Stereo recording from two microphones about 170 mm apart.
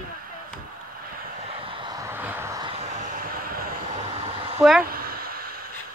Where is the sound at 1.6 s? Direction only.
30° right (ahead or behind).